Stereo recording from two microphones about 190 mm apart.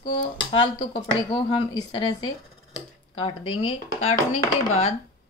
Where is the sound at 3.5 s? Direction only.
35° left (ahead or behind).